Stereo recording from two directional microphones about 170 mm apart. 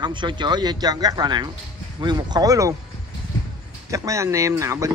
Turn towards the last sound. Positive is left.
turn(degrees=-20)  # may be behind; listen again after turning